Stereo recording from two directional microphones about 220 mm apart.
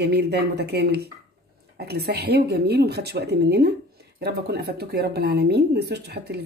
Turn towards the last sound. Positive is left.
turn(degrees=-45)  # may be behind; listen again after turning